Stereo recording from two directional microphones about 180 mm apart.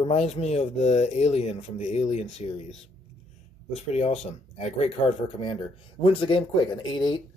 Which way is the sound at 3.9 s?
40° left (ahead or behind).